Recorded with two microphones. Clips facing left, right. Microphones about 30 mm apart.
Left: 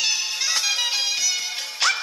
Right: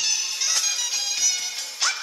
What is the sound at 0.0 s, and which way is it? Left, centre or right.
Music, left.